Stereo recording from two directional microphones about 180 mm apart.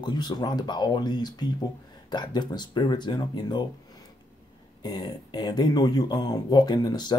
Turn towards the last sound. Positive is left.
turn(degrees=25)  # may be behind; listen again after turning